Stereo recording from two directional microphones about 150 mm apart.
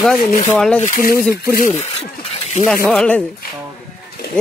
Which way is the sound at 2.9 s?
10° left (ahead or behind).